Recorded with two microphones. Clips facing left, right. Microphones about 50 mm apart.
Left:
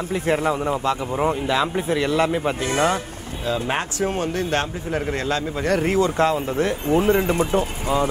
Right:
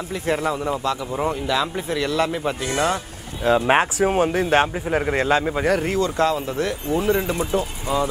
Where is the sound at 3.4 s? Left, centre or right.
Right.